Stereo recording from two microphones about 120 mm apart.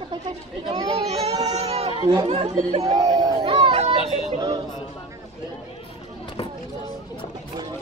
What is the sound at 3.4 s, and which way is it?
Speech, 50° right (ahead or behind).